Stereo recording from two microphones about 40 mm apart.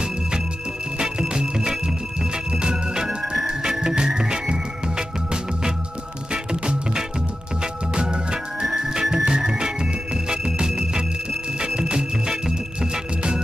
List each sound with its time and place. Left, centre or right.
0.9 s music: centre
8.6 s music: centre